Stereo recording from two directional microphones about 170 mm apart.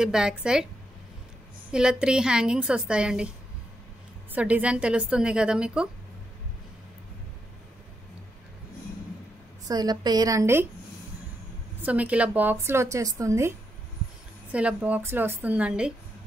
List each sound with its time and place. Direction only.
0.0 s a woman's voice: 5° right (ahead or behind)
1.7 s a woman's voice: 5° right (ahead or behind)
4.3 s a woman's voice: 10° right (ahead or behind)
9.7 s a woman's voice: 25° right (ahead or behind)
11.8 s a woman's voice: 10° right (ahead or behind)
14.5 s a woman's voice: 5° right (ahead or behind)